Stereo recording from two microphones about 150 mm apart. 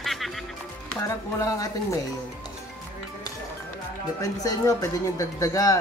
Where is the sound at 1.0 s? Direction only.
20° left (ahead or behind).